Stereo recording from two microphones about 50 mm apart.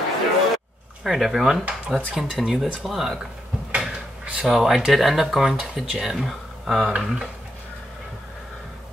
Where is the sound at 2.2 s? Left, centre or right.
Centre.